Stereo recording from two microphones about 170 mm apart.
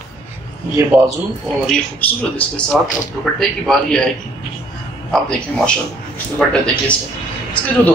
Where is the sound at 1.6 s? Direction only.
5° left (ahead or behind).